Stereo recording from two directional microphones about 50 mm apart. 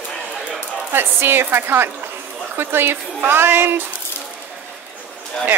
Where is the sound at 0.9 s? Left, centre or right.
Right.